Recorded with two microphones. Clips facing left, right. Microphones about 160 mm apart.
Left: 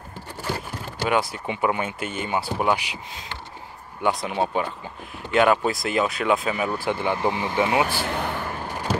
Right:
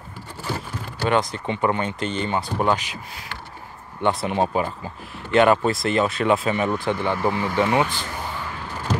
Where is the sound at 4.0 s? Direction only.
Centre (ahead or behind).